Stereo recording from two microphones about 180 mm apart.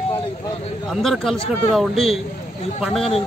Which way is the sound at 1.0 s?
Centre (ahead or behind).